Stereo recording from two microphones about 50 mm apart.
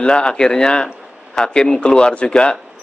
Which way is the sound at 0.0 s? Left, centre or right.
Centre.